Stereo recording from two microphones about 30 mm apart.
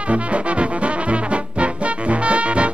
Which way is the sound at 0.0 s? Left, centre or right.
Right.